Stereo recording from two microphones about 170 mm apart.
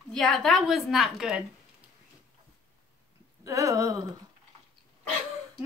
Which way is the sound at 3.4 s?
20° right (ahead or behind).